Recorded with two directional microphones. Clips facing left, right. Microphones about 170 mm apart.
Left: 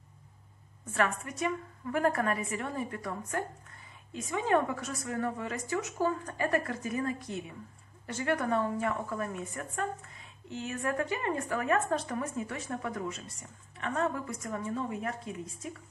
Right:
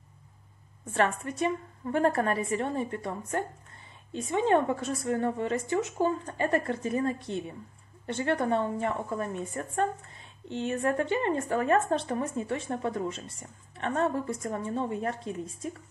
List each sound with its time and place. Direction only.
0.8 s a woman's voice: 30° right (ahead or behind)